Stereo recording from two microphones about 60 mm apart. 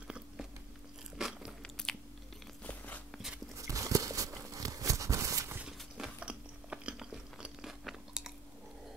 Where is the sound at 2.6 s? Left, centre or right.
Left.